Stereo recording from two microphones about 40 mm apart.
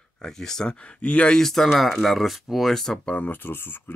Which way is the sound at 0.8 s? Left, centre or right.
Left.